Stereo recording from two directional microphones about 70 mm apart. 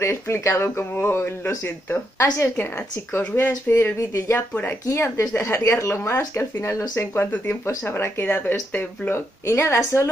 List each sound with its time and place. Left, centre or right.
0.0 s speech: left
4.8 s speech: left
9.5 s speech: left